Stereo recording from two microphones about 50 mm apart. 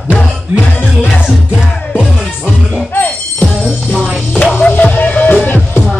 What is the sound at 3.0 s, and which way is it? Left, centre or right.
Music, left.